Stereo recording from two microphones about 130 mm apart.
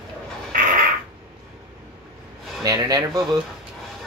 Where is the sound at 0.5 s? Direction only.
90° right.